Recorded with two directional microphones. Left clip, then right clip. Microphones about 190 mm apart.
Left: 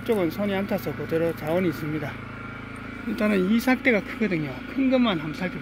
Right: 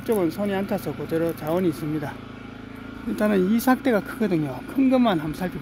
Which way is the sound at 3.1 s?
25° right (ahead or behind).